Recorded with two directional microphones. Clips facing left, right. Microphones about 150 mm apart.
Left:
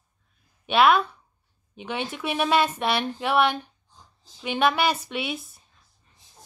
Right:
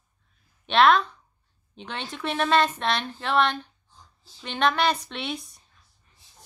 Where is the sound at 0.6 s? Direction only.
5° left (ahead or behind).